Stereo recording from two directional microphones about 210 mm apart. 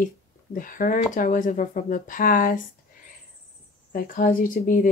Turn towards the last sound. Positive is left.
turn(degrees=40)  # may be behind; listen again after turning